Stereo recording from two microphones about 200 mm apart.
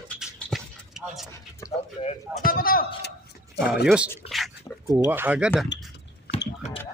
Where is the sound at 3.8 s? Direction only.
5° right (ahead or behind).